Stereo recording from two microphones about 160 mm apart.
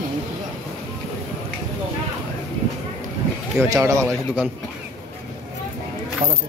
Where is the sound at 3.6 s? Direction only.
20° right (ahead or behind).